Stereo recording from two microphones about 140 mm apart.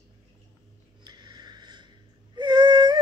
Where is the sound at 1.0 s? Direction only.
30° right (ahead or behind).